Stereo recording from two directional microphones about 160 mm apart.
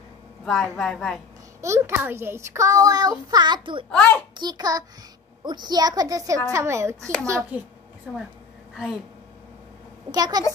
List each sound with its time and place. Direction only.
0.5 s a woman's voice: 5° left (ahead or behind)
1.6 s a child's voice: 15° right (ahead or behind)
3.9 s a child's voice: 5° left (ahead or behind)
4.4 s a child's voice: 25° right (ahead or behind)
8.7 s speech: centre (ahead or behind)
10.1 s a child's voice: 25° right (ahead or behind)